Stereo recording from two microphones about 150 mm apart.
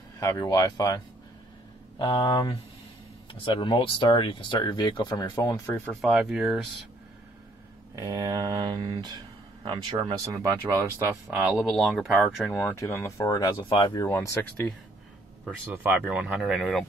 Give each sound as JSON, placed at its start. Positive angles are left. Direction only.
{"t": 0.2, "sound": "speech", "side_deg": 20}
{"t": 5.9, "sound": "speech", "side_deg": 0}
{"t": 7.9, "sound": "speech", "side_deg": -25}
{"t": 11.7, "sound": "speech", "side_deg": 0}
{"t": 12.5, "sound": "speech", "side_deg": 15}
{"t": 14.0, "sound": "speech", "side_deg": 15}
{"t": 15.7, "sound": "speech", "side_deg": -10}